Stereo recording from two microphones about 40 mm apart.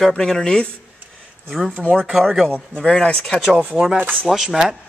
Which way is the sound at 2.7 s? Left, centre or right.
Left.